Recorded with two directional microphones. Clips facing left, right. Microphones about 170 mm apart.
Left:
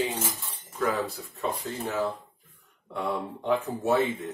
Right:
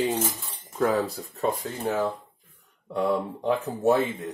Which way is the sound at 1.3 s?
40° right (ahead or behind).